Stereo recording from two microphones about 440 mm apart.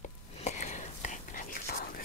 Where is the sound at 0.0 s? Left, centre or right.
Centre.